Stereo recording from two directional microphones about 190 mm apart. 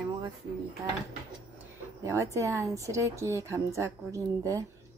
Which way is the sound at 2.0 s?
15° right (ahead or behind).